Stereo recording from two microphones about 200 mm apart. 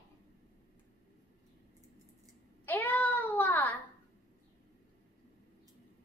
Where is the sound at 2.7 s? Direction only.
10° left (ahead or behind).